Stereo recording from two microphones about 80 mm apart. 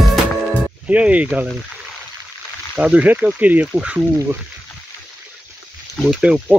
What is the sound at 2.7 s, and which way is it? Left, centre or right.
Speech, centre.